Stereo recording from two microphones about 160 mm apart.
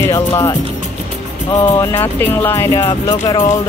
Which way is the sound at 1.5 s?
20° left (ahead or behind).